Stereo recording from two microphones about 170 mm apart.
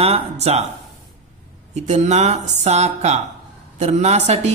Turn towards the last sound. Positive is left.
turn(degrees=-40)  # may be behind; listen again after turning